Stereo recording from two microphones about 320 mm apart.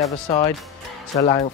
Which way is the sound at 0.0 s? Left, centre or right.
Centre.